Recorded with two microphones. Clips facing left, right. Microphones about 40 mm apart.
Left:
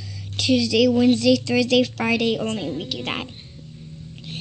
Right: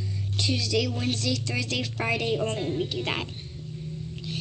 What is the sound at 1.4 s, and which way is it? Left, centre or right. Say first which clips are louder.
Speech: left 11 dB; left.